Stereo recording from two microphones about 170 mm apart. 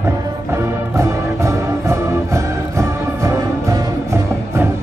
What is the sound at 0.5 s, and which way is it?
Music, 15° right (ahead or behind).